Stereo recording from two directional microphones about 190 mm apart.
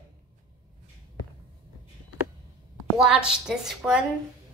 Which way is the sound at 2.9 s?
5° right (ahead or behind).